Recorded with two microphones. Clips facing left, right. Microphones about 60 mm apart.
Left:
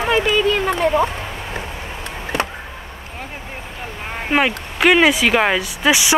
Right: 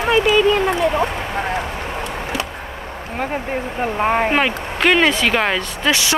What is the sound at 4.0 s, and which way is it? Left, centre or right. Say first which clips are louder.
Speech: right 13 dB; right.